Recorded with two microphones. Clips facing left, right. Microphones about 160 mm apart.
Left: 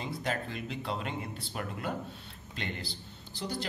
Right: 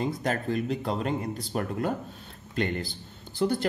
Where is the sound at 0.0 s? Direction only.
45° right (ahead or behind).